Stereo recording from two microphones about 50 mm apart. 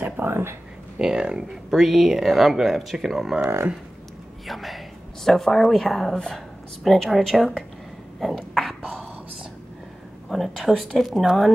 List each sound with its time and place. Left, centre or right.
0.3 s speech: right
0.9 s speech: centre
3.4 s speech: right
4.5 s speech: centre
8.2 s a sound: centre
10.3 s speech: centre